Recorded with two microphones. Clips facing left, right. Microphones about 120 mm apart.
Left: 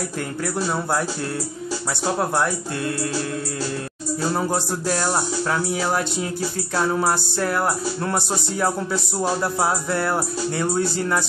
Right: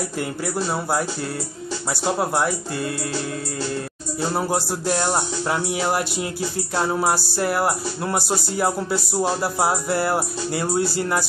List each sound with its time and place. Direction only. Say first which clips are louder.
2.0 s speech: even; 5° right (ahead or behind)
4.3 s speech: right 1 dB; 10° right (ahead or behind)